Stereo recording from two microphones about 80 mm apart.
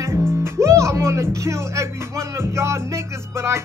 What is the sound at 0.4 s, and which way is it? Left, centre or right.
Speech, right.